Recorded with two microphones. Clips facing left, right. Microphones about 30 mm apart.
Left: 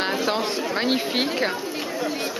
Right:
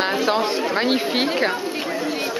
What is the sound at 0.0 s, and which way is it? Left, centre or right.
Speech, centre.